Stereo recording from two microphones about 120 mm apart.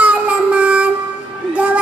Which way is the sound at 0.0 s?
10° right (ahead or behind).